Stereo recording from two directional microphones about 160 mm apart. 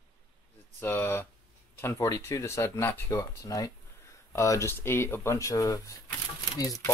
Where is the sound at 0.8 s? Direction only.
15° left (ahead or behind).